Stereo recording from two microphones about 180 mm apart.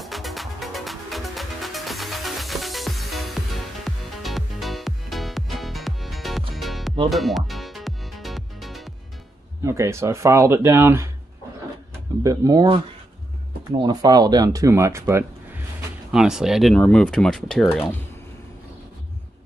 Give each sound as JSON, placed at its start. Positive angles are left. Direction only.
{"t": 0.0, "sound": "music", "side_deg": 0}
{"t": 9.6, "sound": "speech", "side_deg": -15}
{"t": 12.2, "sound": "speech", "side_deg": -20}
{"t": 16.1, "sound": "speech", "side_deg": -5}